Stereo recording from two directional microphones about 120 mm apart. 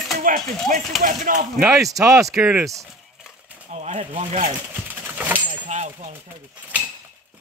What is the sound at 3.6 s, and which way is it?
Speech, 75° right (ahead or behind).